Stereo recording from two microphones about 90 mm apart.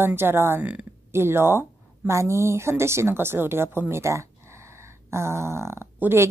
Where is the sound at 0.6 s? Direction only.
15° right (ahead or behind).